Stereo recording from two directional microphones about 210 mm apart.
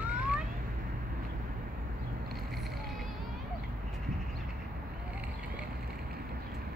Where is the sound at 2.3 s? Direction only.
Centre (ahead or behind).